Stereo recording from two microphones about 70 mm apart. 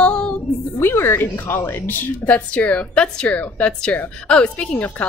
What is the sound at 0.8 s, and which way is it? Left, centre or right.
A woman's voice, left.